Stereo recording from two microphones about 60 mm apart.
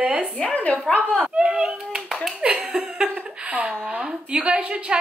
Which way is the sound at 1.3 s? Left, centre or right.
Centre.